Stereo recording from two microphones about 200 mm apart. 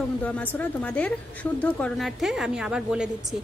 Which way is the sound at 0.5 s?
5° left (ahead or behind).